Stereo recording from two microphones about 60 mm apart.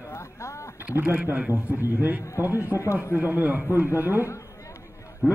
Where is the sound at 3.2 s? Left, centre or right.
Right.